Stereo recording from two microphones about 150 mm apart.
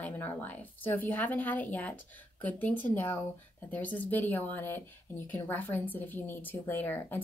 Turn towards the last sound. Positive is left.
turn(degrees=15)  # may be behind; listen again after turning